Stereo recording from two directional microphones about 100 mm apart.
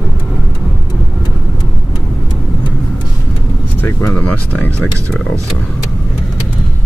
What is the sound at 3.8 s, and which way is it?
Vehicle, 20° left (ahead or behind).